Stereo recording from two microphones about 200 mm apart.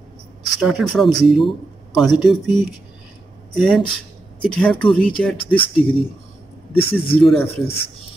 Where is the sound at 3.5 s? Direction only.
Centre (ahead or behind).